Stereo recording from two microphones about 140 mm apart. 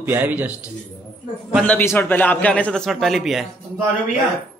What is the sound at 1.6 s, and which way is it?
A man's voice, 15° left (ahead or behind).